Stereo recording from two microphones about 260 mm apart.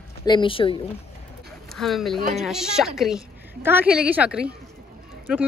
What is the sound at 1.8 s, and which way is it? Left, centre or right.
Speech, centre.